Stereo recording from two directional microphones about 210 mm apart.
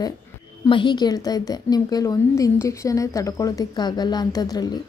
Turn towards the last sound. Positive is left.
turn(degrees=20)  # may be behind; listen again after turning